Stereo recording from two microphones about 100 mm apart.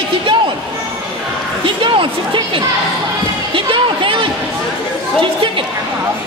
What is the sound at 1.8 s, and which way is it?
Speech, 55° right (ahead or behind).